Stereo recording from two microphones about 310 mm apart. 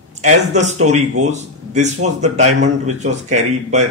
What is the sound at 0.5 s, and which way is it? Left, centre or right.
A man's voice, right.